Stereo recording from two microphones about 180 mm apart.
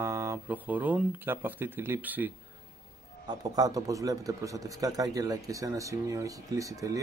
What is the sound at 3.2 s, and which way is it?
Speech, 20° right (ahead or behind).